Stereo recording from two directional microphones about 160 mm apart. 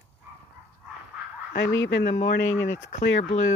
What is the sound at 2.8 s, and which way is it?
Speech, 45° left (ahead or behind).